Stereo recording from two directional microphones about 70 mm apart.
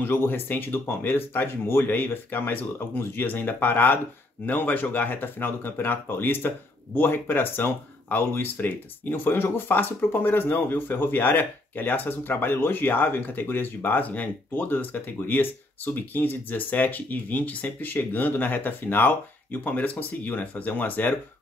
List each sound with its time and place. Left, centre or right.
0.0 s speech: left